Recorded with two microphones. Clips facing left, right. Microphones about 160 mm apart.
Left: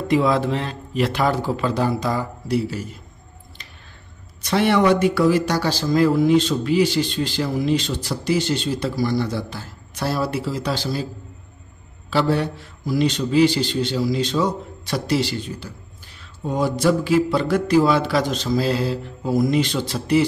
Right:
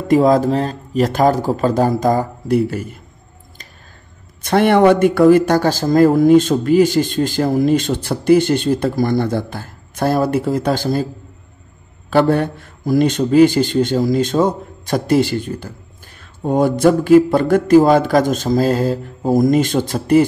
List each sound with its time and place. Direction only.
0.1 s speech: 45° right (ahead or behind)
4.4 s speech: 50° right (ahead or behind)
12.1 s speech: 50° right (ahead or behind)